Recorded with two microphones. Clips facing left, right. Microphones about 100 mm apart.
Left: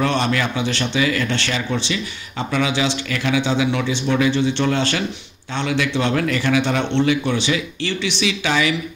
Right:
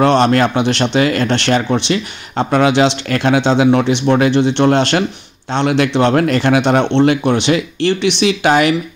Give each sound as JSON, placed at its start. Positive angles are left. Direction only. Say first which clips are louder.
{"t": 0.0, "sound": "speech", "louder": "right 9 dB", "side_deg": -65}